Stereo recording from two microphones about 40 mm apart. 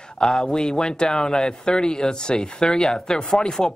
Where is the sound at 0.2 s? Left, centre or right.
Centre.